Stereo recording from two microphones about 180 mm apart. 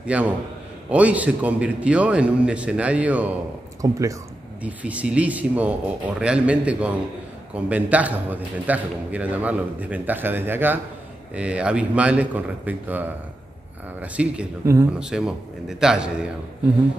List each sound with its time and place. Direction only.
0.0 s a man's voice: 5° right (ahead or behind)
4.6 s a man's voice: 5° right (ahead or behind)
14.1 s a man's voice: 5° right (ahead or behind)